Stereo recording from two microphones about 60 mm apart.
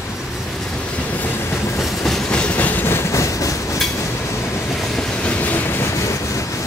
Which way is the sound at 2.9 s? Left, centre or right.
Left.